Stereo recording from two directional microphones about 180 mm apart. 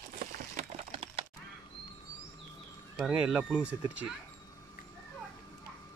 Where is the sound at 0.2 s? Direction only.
40° right (ahead or behind).